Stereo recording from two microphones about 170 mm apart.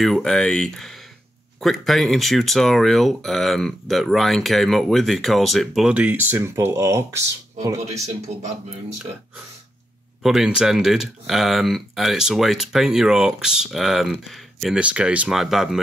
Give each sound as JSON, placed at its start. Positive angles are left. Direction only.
{"t": 0.0, "sound": "speech", "side_deg": 5}
{"t": 10.2, "sound": "speech", "side_deg": -5}